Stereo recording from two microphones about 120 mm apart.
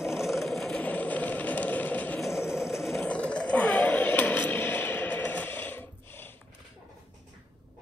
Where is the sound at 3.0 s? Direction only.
10° left (ahead or behind).